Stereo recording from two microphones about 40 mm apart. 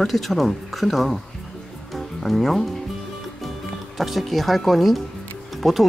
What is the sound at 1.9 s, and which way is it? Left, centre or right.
Music, centre.